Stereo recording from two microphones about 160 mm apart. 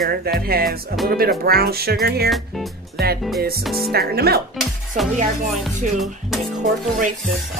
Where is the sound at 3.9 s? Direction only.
75° right (ahead or behind).